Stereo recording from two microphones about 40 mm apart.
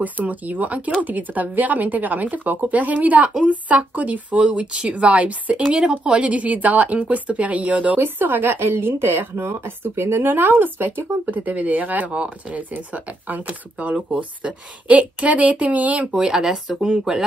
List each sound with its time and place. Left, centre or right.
0.0 s speech: right
5.7 s speech: right
6.1 s speech: right
8.0 s a woman's voice: right
16.1 s speech: centre